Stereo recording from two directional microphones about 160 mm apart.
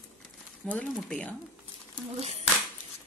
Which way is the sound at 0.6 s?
5° left (ahead or behind).